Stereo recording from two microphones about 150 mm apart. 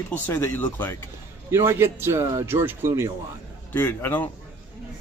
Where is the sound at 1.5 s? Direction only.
15° right (ahead or behind).